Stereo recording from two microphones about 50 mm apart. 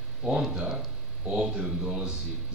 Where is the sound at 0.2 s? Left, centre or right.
Centre.